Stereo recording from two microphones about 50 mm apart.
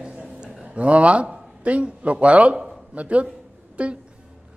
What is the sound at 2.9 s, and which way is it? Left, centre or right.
Speech, right.